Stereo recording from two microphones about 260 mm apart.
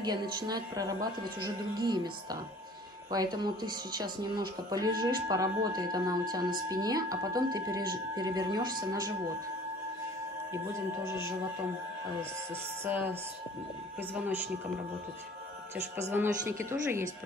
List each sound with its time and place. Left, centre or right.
0.0 s speech: centre
3.1 s speech: centre
11.1 s speech: centre
12.8 s speech: centre
14.1 s speech: centre
16.1 s speech: centre